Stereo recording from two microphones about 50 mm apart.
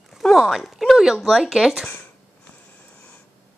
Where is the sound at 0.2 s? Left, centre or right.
Centre.